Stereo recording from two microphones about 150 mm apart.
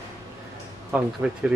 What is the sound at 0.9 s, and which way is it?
Speech, 10° right (ahead or behind).